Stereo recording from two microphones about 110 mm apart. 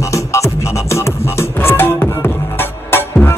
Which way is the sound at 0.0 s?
25° left (ahead or behind).